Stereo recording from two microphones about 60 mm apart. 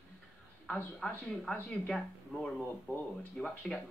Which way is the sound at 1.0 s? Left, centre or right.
Centre.